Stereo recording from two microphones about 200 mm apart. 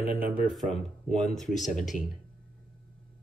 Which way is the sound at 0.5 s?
Centre (ahead or behind).